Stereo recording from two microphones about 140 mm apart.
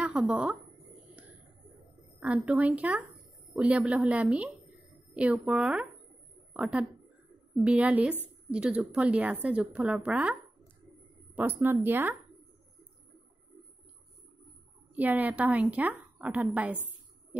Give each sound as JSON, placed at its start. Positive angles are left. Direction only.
{"t": 0.0, "sound": "speech", "side_deg": -5}
{"t": 2.1, "sound": "speech", "side_deg": -10}
{"t": 11.3, "sound": "speech", "side_deg": -15}
{"t": 15.0, "sound": "speech", "side_deg": -10}